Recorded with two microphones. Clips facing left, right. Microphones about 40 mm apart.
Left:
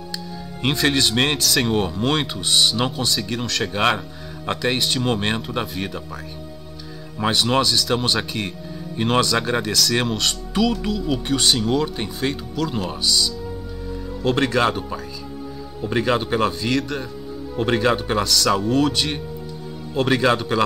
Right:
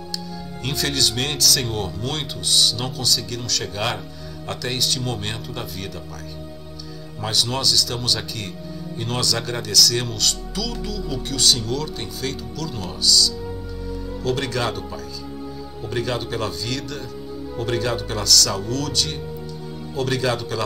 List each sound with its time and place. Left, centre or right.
0.7 s speech: left
7.2 s speech: left
15.9 s speech: left